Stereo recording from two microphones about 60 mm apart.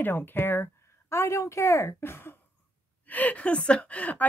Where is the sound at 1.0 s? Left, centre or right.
Left.